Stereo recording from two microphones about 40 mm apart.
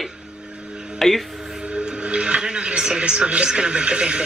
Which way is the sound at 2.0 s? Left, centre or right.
Right.